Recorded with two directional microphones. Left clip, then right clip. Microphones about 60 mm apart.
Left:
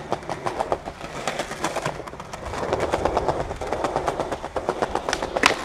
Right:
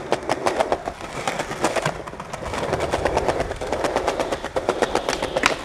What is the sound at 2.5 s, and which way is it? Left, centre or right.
Train, centre.